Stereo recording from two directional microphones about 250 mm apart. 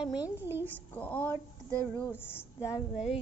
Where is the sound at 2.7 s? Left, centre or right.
Centre.